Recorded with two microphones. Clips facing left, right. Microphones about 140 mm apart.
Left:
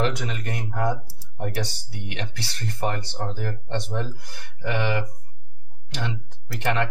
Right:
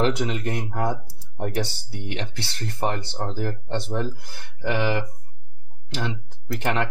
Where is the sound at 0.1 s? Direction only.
25° right (ahead or behind).